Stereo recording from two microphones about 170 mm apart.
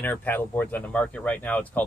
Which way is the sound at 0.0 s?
10° left (ahead or behind).